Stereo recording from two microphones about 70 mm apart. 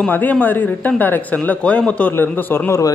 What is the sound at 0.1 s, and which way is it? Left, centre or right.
Speech, left.